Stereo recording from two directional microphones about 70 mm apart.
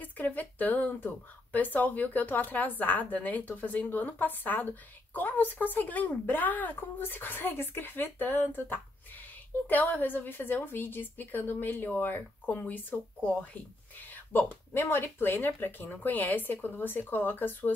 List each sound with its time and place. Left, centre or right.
0.0 s speech: left